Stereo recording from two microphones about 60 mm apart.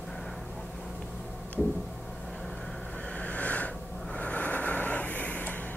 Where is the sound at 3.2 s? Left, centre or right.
Left.